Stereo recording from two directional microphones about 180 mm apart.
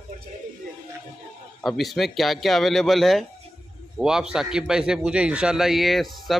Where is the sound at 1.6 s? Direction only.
Centre (ahead or behind).